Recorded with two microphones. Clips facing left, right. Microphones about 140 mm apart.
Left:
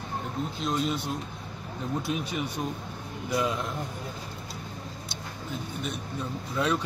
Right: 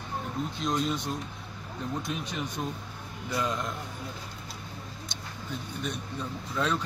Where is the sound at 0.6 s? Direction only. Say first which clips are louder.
Left 1 dB; centre (ahead or behind).